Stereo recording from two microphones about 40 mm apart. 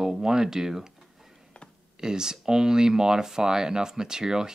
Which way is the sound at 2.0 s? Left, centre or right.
Centre.